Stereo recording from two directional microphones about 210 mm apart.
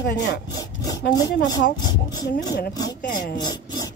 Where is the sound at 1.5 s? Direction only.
20° left (ahead or behind).